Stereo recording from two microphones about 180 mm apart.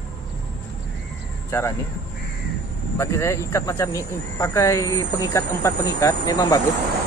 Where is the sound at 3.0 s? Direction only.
15° left (ahead or behind).